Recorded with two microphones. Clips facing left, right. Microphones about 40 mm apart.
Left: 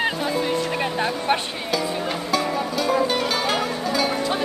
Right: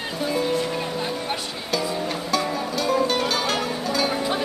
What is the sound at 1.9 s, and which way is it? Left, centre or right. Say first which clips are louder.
Music: left 1 dB; left.